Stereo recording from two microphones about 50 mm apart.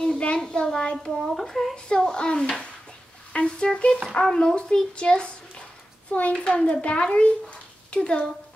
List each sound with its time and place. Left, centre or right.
0.0 s a child's voice: centre
1.2 s speech: centre
1.9 s a child's voice: centre
6.3 s a child's voice: left